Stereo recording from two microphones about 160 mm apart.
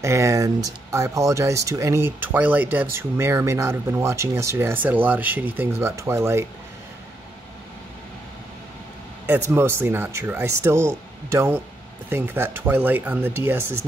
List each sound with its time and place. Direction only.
0.0 s speech: 20° right (ahead or behind)
9.5 s speech: 15° right (ahead or behind)